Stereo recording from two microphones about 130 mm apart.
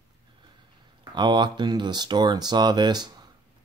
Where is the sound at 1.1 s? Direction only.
35° right (ahead or behind).